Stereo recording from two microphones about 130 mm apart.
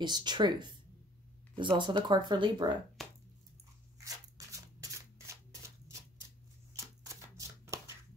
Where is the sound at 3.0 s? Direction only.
Centre (ahead or behind).